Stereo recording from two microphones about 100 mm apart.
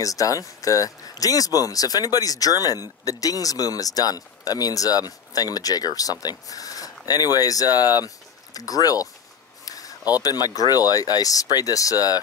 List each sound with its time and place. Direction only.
0.0 s speech: 35° left (ahead or behind)
9.7 s a sound: 35° left (ahead or behind)
10.2 s speech: 40° left (ahead or behind)